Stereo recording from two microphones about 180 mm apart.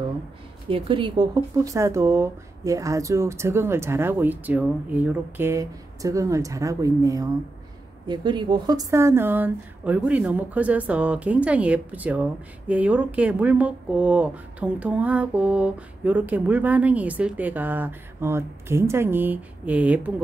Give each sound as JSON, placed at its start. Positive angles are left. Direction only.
{"t": 0.7, "sound": "speech", "side_deg": -30}